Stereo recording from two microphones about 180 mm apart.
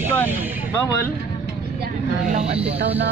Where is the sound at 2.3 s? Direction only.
35° right (ahead or behind).